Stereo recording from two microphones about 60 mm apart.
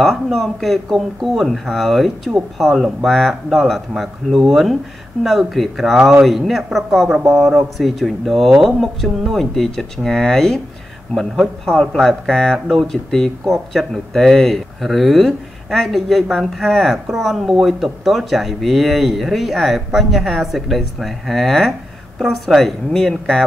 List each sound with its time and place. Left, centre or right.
0.0 s speech: centre
11.6 s speech: centre